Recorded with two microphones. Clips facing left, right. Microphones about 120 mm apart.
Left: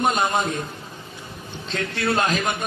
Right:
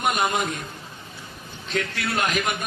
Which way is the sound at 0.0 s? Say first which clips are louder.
Left 2 dB; 30° left (ahead or behind).